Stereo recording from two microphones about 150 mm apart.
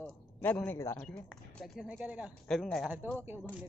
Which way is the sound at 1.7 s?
10° right (ahead or behind).